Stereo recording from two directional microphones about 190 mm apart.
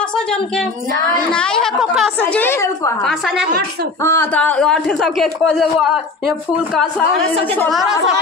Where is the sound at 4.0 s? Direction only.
15° left (ahead or behind).